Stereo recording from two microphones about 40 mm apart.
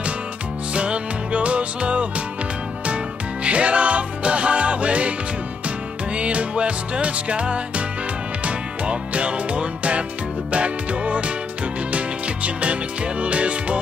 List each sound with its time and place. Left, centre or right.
0.7 s music: right
3.4 s music: right
6.1 s music: right
13.2 s music: right